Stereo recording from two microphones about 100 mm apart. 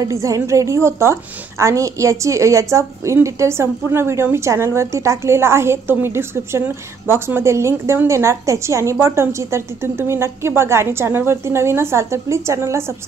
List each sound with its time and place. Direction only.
0.1 s a woman's voice: 30° right (ahead or behind)